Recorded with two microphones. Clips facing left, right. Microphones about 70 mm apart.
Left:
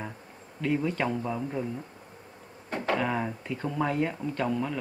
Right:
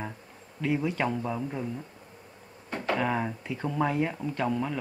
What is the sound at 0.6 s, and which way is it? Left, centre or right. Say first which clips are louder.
Speech: even; centre.